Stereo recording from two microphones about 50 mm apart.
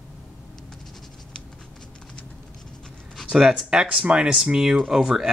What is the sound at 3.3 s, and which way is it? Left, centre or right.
Speech, centre.